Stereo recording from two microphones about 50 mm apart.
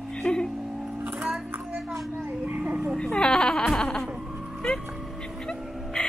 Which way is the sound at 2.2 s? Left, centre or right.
Right.